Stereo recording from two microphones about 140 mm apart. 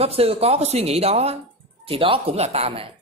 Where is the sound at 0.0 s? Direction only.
45° right (ahead or behind).